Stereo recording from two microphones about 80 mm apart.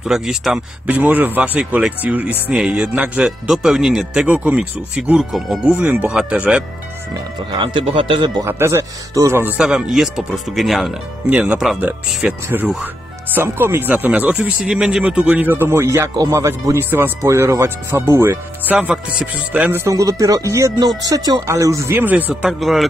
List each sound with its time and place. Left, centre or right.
0.0 s speech: centre
0.8 s a man's voice: right
7.6 s speech: right
8.5 s speech: right
9.6 s speech: centre
11.2 s speech: centre
13.3 s a man's voice: right
18.8 s a man's voice: centre
19.9 s speech: right
21.9 s a man's voice: right
22.3 s speech: centre